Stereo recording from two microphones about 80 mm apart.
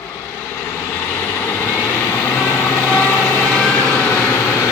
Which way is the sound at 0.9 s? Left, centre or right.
Left.